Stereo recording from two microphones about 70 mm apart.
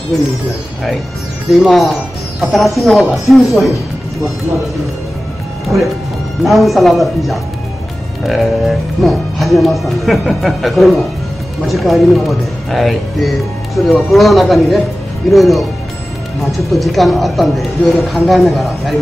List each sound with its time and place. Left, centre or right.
1.5 s speech: centre
6.4 s speech: centre